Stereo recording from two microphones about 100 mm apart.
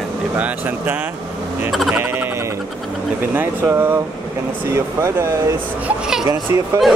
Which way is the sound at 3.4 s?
20° right (ahead or behind).